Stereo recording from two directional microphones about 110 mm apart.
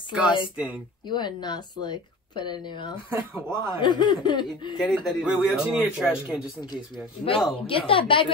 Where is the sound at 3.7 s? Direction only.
45° left (ahead or behind).